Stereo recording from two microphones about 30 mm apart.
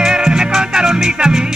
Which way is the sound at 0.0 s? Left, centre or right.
Centre.